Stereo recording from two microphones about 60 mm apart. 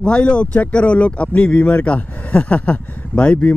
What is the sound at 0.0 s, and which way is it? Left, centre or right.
Speech, centre.